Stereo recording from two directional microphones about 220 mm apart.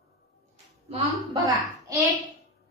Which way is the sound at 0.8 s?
20° right (ahead or behind).